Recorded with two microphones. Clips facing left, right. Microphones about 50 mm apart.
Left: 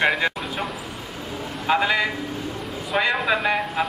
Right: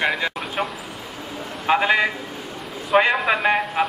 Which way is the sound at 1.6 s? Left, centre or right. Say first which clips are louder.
Right 2 dB; right.